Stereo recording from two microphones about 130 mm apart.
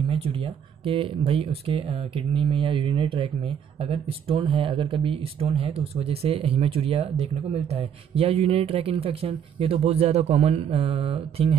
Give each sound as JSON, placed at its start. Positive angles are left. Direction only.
{"t": 0.1, "sound": "speech", "side_deg": -45}